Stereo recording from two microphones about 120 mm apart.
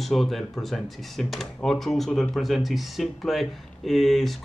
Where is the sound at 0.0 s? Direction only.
Centre (ahead or behind).